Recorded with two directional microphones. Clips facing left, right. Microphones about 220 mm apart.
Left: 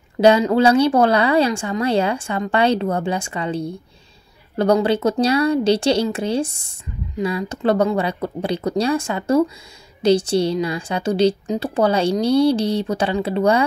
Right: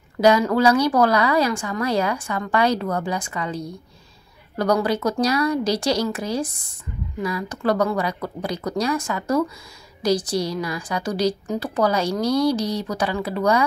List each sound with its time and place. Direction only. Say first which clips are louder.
0.2 s speech: left 3 dB; 25° left (ahead or behind)